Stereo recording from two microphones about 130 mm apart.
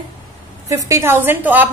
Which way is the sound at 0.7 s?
25° right (ahead or behind).